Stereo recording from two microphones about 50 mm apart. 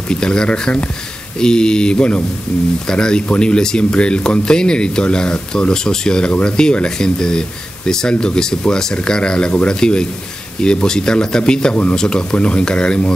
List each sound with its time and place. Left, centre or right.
0.1 s speech: centre